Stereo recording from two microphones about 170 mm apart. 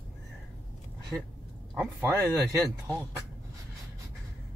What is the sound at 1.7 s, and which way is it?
Speech, 10° right (ahead or behind).